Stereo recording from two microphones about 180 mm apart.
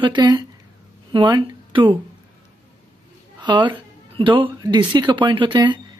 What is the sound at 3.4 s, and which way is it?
A woman's voice, 25° right (ahead or behind).